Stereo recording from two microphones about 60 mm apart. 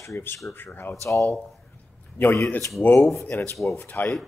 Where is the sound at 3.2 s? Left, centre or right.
Left.